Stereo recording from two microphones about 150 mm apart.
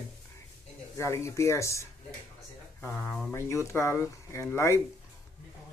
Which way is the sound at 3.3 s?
20° left (ahead or behind).